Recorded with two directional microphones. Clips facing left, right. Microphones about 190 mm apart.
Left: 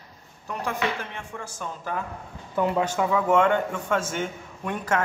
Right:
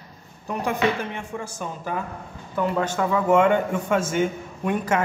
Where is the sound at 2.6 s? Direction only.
10° left (ahead or behind).